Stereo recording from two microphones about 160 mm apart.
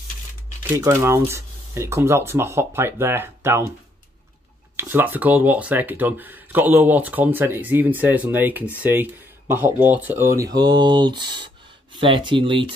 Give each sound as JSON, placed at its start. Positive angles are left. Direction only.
{"t": 0.7, "sound": "speech", "side_deg": -15}
{"t": 4.7, "sound": "speech", "side_deg": -15}